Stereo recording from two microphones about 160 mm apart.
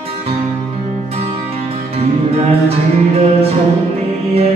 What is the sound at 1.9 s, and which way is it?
Music, 40° right (ahead or behind).